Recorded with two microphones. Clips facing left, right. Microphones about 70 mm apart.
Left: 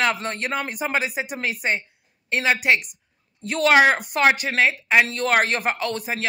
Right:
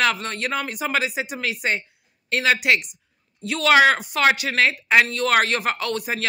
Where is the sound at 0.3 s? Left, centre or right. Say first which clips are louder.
Even; left.